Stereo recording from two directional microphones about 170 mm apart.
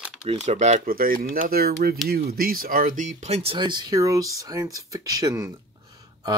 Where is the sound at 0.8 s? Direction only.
55° right (ahead or behind).